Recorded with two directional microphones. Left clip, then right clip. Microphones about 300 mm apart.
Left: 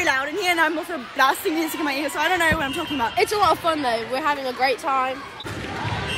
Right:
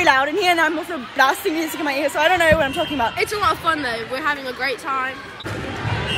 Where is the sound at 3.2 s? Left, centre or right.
Centre.